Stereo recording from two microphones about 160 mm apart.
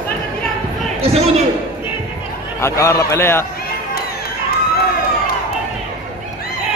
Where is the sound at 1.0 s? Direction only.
40° right (ahead or behind).